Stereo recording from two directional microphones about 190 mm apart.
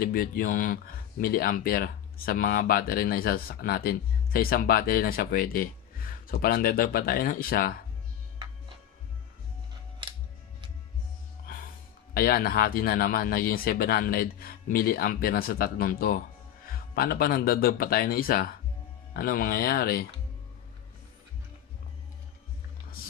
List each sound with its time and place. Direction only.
0.0 s speech: 50° left (ahead or behind)
12.1 s speech: 50° left (ahead or behind)